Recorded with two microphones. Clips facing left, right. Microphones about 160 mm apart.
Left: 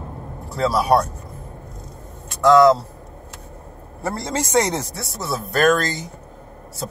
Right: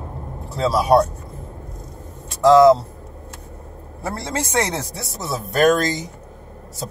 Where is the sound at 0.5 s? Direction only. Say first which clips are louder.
Right 2 dB; 20° right (ahead or behind).